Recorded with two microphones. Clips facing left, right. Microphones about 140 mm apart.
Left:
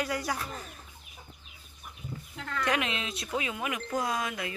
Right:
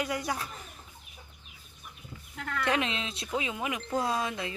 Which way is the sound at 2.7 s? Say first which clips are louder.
Right 1 dB; 25° right (ahead or behind).